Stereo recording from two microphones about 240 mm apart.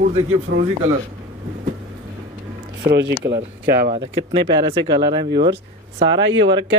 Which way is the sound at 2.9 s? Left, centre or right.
Right.